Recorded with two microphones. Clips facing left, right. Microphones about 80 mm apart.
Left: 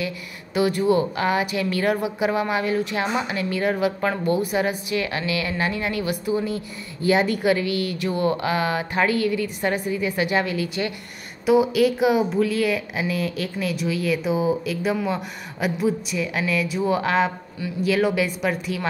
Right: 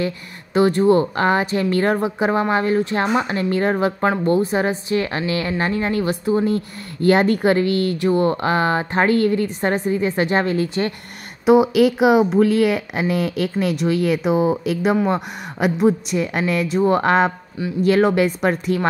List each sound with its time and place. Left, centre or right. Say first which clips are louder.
0.6 s speech: right 5 dB; right
11.4 s a woman's voice: right 4 dB; right